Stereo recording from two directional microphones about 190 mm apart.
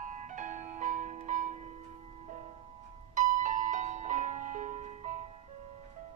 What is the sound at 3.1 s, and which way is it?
Music, 40° right (ahead or behind).